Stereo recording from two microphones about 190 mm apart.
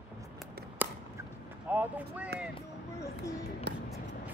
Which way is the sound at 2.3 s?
55° right (ahead or behind).